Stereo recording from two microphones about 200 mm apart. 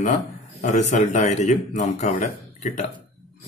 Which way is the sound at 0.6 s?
35° left (ahead or behind).